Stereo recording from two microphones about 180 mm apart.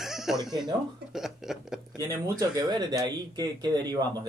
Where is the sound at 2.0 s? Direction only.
15° right (ahead or behind).